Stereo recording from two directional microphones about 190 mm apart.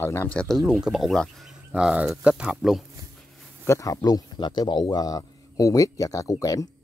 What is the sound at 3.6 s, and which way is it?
Speech, 15° left (ahead or behind).